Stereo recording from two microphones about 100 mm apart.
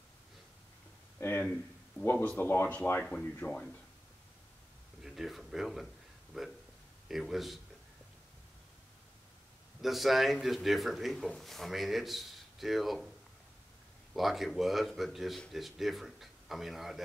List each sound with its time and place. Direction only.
1.2 s speech: 25° left (ahead or behind)
5.0 s speech: 5° right (ahead or behind)
9.8 s speech: centre (ahead or behind)
14.1 s speech: centre (ahead or behind)